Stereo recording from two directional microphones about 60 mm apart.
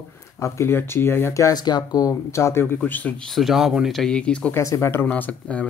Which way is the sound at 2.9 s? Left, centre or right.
Left.